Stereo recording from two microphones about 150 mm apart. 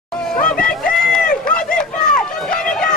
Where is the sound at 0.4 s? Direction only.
5° left (ahead or behind).